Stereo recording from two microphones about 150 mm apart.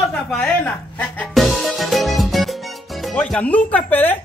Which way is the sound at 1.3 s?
Centre (ahead or behind).